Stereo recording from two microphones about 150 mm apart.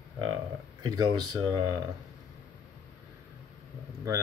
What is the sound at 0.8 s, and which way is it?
Speech, 30° right (ahead or behind).